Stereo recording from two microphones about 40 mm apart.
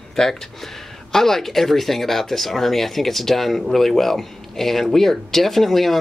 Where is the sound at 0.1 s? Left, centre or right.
Centre.